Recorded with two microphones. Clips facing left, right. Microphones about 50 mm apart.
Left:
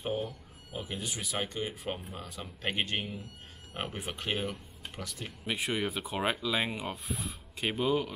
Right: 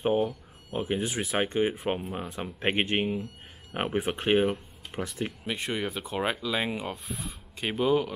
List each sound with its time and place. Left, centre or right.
0.0 s speech: right
5.5 s speech: centre